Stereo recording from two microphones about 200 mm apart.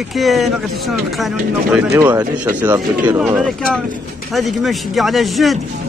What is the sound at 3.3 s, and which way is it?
Speech, 5° left (ahead or behind).